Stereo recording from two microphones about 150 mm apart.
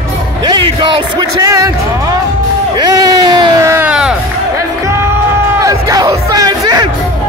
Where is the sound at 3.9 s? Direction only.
5° right (ahead or behind).